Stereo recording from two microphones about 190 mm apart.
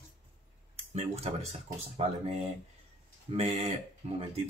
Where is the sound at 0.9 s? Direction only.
35° right (ahead or behind).